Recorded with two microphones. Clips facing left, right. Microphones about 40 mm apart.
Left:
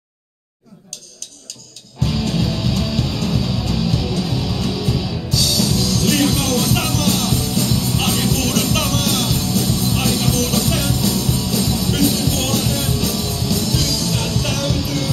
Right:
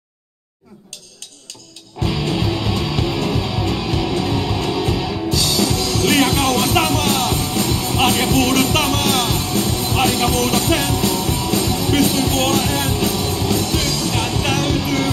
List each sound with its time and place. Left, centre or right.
2.0 s music: right